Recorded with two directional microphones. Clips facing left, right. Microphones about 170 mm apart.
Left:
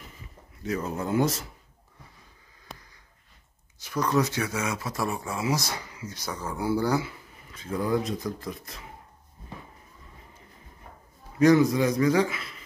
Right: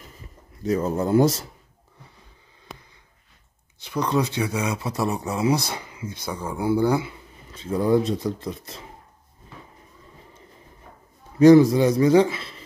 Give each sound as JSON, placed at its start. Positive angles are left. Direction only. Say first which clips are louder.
{"t": 0.7, "sound": "speech", "louder": "right 7 dB", "side_deg": -35}
{"t": 2.7, "sound": "snort", "louder": "right 3 dB", "side_deg": 0}
{"t": 3.9, "sound": "speech", "louder": "right 2 dB", "side_deg": -15}
{"t": 6.2, "sound": "speech", "louder": "right 4 dB", "side_deg": -10}
{"t": 11.3, "sound": "speech", "louder": "right 7 dB", "side_deg": -30}